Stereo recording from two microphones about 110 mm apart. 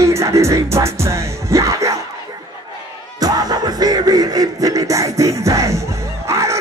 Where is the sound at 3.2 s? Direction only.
35° right (ahead or behind).